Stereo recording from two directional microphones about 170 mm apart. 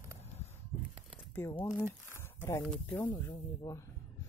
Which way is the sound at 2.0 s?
15° left (ahead or behind).